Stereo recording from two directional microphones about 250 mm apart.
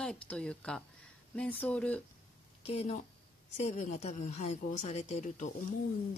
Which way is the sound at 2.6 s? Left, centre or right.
Left.